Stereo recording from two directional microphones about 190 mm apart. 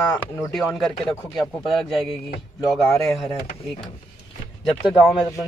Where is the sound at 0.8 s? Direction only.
Centre (ahead or behind).